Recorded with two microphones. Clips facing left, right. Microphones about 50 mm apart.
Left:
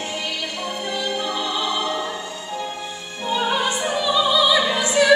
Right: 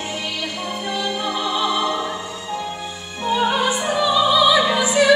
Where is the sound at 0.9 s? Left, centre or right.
Centre.